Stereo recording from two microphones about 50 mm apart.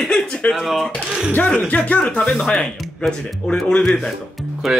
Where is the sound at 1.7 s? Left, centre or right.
Left.